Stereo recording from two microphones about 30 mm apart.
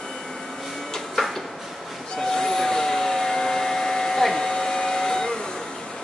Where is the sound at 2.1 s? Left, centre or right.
Centre.